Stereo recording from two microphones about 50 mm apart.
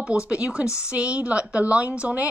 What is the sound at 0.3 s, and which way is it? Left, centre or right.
Speech, right.